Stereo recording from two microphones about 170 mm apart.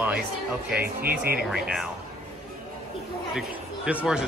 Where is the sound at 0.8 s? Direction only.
65° right (ahead or behind).